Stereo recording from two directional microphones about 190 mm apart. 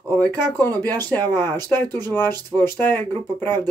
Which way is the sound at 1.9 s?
20° right (ahead or behind).